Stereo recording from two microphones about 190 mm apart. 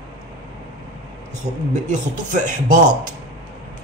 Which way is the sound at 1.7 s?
40° right (ahead or behind).